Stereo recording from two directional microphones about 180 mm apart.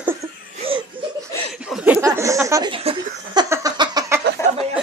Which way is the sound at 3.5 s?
20° right (ahead or behind).